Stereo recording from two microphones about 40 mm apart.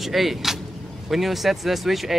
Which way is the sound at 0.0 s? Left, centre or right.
Centre.